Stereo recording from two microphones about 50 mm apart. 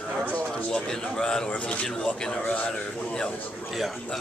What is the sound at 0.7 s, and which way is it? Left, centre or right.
Speech, centre.